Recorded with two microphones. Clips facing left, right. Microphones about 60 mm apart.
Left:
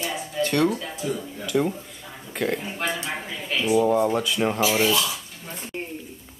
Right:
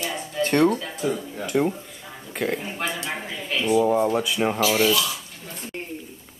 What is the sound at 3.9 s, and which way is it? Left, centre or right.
Speech, centre.